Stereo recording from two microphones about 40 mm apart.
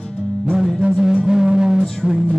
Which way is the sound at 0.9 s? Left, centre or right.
Centre.